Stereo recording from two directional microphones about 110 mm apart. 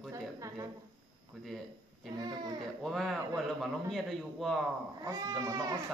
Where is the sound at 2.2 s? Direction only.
40° right (ahead or behind).